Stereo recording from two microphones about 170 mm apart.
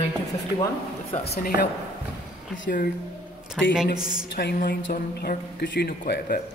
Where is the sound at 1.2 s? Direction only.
60° left (ahead or behind).